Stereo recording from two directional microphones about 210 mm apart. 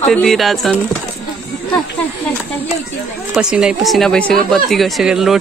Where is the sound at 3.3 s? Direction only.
5° right (ahead or behind).